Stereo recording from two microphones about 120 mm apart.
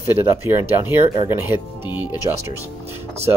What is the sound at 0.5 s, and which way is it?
Speech, 20° right (ahead or behind).